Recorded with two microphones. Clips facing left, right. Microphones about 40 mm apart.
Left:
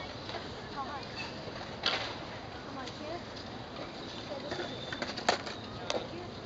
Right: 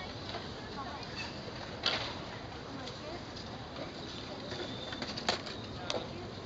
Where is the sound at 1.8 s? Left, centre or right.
Centre.